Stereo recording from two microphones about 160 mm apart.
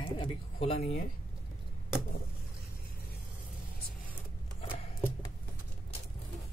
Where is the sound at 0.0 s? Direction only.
35° left (ahead or behind).